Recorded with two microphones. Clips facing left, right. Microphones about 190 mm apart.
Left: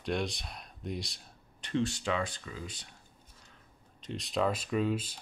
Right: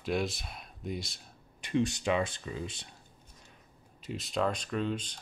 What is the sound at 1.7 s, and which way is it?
Speech, 15° right (ahead or behind).